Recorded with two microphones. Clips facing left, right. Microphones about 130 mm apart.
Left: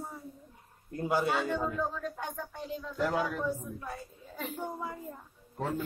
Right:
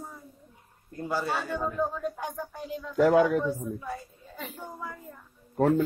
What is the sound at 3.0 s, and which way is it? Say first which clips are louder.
Speech: right 10 dB; 60° right (ahead or behind).